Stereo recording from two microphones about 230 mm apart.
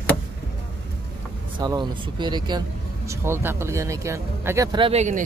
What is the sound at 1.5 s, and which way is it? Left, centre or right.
Speech, centre.